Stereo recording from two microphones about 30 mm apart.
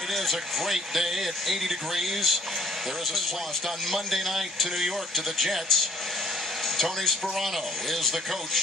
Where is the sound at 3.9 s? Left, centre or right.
Centre.